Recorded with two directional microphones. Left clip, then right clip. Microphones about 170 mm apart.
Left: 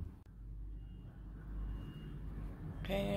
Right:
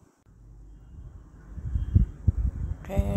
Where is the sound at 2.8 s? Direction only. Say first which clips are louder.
Right 4 dB; 20° right (ahead or behind).